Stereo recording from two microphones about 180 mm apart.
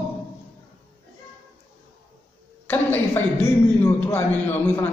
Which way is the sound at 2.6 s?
10° left (ahead or behind).